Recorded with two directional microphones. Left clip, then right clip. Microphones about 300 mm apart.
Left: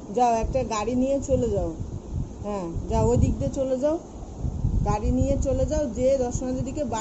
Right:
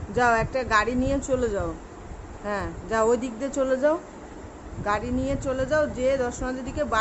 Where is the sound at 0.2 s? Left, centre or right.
Right.